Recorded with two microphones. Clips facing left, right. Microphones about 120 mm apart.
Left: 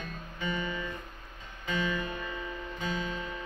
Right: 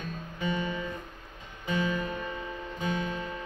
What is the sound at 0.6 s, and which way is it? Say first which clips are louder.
Music: right 2 dB; 25° right (ahead or behind).